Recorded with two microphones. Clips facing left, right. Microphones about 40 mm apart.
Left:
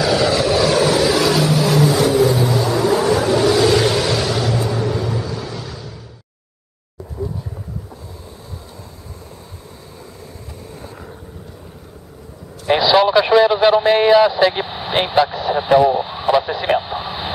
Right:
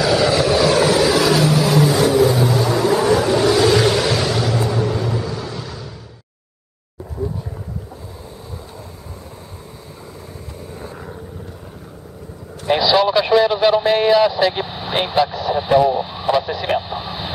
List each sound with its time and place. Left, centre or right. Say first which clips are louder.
0.0 s vehicle: even; centre
7.2 s vehicle: right 1 dB; right
10.7 s vehicle: right 3 dB; centre
12.6 s a sound: left 2 dB; centre